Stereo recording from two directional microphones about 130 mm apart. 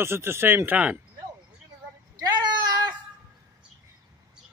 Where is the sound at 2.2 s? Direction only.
35° right (ahead or behind).